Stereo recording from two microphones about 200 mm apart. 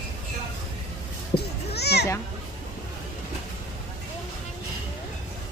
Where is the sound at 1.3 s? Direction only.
55° left (ahead or behind).